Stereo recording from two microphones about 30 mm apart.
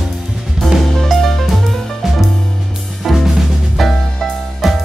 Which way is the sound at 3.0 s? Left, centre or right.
Centre.